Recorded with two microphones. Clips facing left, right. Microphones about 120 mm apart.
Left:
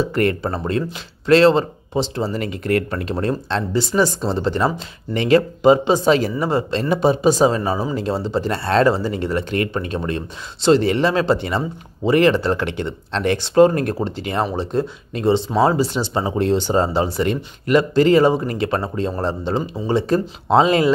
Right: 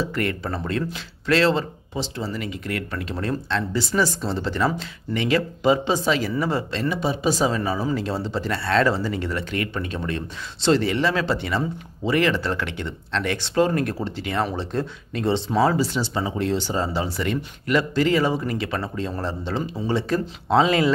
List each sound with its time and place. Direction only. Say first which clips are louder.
0.2 s speech: left 6 dB; 40° left (ahead or behind)
2.3 s speech: left 8 dB; 45° left (ahead or behind); by 4.8 s 20° left (ahead or behind)
5.1 s speech: left 7 dB; 35° left (ahead or behind)
6.2 s speech: left 4 dB; 25° left (ahead or behind)
6.9 s speech: left 8 dB; 50° left (ahead or behind)
7.5 s speech: left 3 dB; 30° left (ahead or behind)
9.5 s speech: left 5 dB; 35° left (ahead or behind)
10.6 s speech: left 5 dB; 20° left (ahead or behind)
16.1 s speech: left 5 dB; 35° left (ahead or behind)
16.6 s speech: left 7 dB; 45° left (ahead or behind)
17.0 s speech: left 5 dB; 30° left (ahead or behind)